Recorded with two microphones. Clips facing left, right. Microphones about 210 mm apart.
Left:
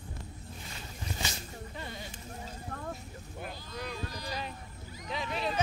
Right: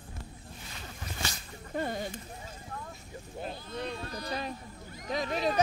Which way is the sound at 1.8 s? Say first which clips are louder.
Right 12 dB; 50° right (ahead or behind).